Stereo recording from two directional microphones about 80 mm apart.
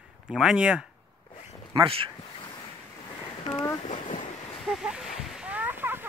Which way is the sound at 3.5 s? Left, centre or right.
Left.